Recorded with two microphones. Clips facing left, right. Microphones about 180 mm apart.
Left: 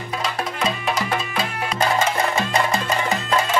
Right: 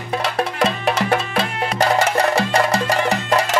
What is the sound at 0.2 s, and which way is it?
Music, 70° right (ahead or behind).